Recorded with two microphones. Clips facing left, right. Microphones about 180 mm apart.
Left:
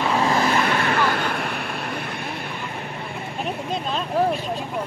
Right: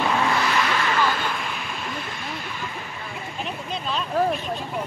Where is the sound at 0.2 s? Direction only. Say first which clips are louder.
Left 3 dB; 40° left (ahead or behind); by 2.0 s 60° left (ahead or behind).